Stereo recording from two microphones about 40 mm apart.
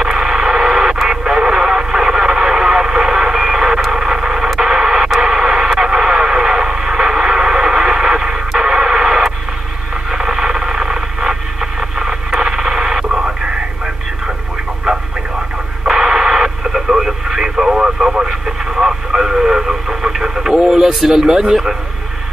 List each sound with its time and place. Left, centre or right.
0.0 s radio: centre
3.9 s vehicle: centre
4.6 s radio: centre
14.9 s radio: right
19.9 s vehicle: centre
21.3 s speech: centre